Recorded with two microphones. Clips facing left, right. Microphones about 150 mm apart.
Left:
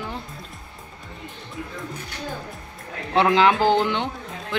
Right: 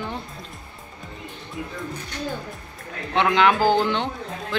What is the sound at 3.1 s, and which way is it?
Speech, 30° left (ahead or behind).